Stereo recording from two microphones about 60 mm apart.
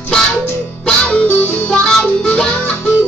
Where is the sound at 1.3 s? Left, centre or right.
Left.